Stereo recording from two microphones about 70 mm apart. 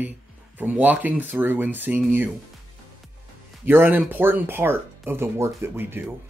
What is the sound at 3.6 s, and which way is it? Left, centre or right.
Speech, right.